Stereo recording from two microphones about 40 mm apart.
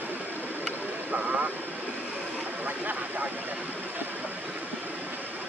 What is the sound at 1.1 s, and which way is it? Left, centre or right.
Vehicle, right.